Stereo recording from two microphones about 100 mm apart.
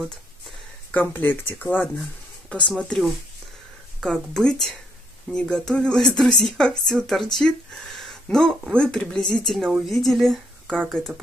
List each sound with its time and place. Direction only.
0.9 s speech: 20° left (ahead or behind)
2.8 s speech: 5° left (ahead or behind)